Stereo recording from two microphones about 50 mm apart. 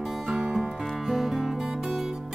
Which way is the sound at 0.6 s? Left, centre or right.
Centre.